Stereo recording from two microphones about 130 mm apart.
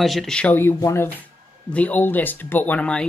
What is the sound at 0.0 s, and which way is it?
Speech, centre (ahead or behind).